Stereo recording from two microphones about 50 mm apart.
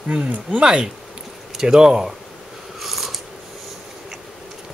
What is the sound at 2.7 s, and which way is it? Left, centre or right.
Mechanisms, centre.